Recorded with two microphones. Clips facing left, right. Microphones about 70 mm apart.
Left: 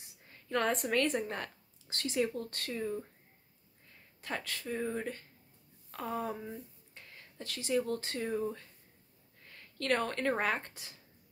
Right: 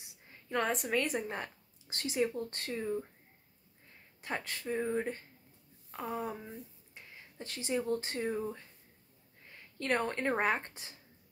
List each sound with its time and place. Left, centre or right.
0.5 s a woman's voice: centre; by 2.8 s right
2.8 s a woman's voice: centre
4.2 s speech: right
5.9 s speech: centre
8.3 s speech: centre
9.5 s speech: centre